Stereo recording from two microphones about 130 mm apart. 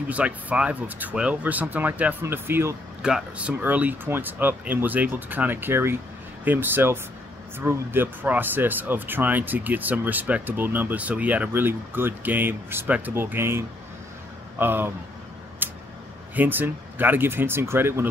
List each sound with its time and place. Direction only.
0.1 s speech: 10° right (ahead or behind)
3.0 s speech: 5° right (ahead or behind)
15.6 s a sound: 15° right (ahead or behind)
16.3 s speech: 15° right (ahead or behind)